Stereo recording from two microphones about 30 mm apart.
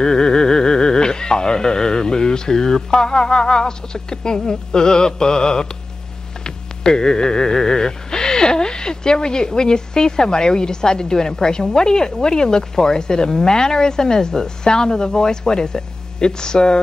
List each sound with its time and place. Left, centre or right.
0.0 s speech: left